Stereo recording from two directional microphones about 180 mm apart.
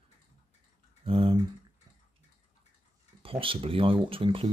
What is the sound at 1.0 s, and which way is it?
Typing, 30° right (ahead or behind).